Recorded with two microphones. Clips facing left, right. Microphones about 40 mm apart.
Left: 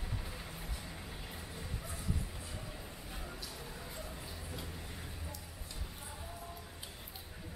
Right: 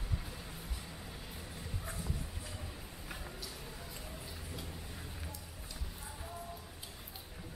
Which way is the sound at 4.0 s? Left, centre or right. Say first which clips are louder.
Left 1 dB; centre.